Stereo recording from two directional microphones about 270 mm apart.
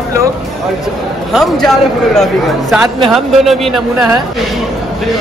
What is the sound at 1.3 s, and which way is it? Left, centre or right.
A man's voice, centre.